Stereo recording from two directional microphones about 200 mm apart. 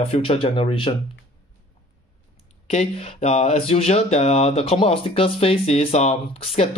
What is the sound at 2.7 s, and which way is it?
Speech, 30° left (ahead or behind).